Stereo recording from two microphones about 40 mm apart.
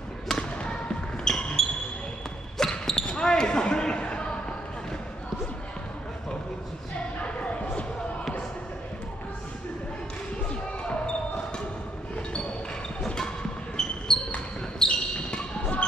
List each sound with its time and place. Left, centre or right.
0.4 s basketball bounce: left
1.2 s basketball bounce: centre
7.2 s a sound: left
13.0 s basketball bounce: centre
14.8 s basketball bounce: left